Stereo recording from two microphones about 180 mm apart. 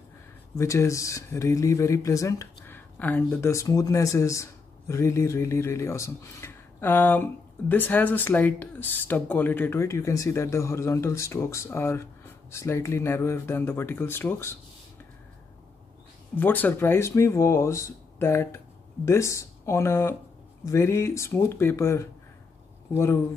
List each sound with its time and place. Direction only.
0.6 s speech: 15° left (ahead or behind)
16.3 s speech: 10° left (ahead or behind)